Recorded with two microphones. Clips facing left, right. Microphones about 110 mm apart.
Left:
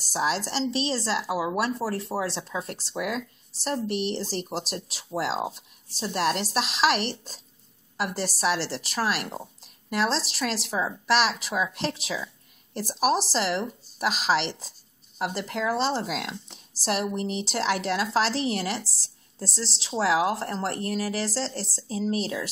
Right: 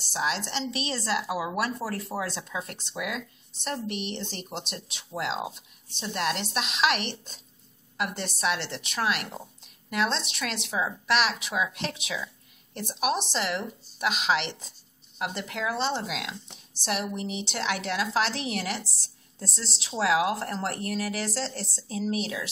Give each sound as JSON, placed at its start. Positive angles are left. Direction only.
{"t": 0.0, "sound": "speech", "side_deg": 5}
{"t": 0.7, "sound": "a woman's voice", "side_deg": 30}
{"t": 1.0, "sound": "speech", "side_deg": 0}